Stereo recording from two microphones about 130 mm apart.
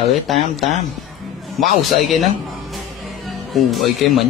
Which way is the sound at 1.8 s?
Centre (ahead or behind).